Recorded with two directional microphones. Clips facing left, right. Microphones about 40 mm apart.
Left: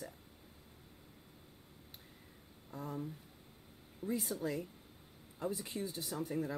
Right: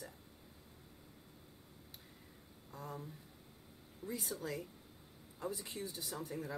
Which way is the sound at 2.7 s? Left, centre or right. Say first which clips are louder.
Left 5 dB; left.